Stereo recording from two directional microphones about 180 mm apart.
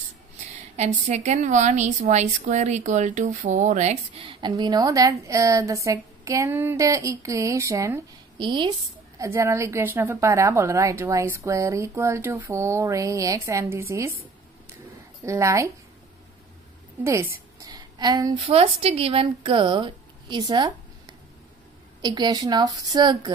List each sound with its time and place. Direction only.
0.7 s a woman's voice: 40° right (ahead or behind); by 8.0 s 15° right (ahead or behind)
8.4 s a woman's voice: 25° right (ahead or behind)
9.2 s a woman's voice: 15° right (ahead or behind)
15.2 s a woman's voice: 15° right (ahead or behind)
17.0 s a woman's voice: 15° right (ahead or behind)
22.0 s a woman's voice: 25° right (ahead or behind)